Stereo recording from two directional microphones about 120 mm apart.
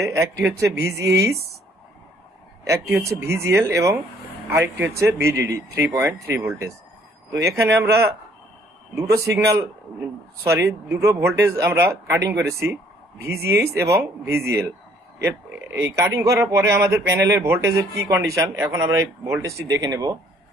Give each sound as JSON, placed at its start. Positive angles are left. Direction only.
{"t": 0.0, "sound": "a man's voice", "side_deg": -25}
{"t": 2.7, "sound": "a man's voice", "side_deg": -25}
{"t": 7.4, "sound": "a man's voice", "side_deg": -25}
{"t": 8.9, "sound": "a man's voice", "side_deg": -25}
{"t": 16.1, "sound": "a man's voice", "side_deg": -25}